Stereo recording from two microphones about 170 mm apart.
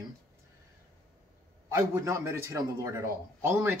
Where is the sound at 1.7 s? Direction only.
15° right (ahead or behind).